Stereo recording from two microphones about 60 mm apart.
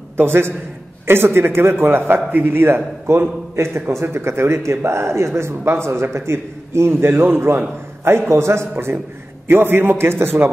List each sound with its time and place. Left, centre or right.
0.2 s a man's voice: right